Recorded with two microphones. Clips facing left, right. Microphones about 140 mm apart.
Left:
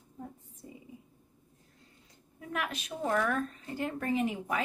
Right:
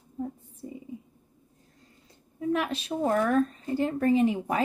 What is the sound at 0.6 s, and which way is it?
Whispering, 30° right (ahead or behind).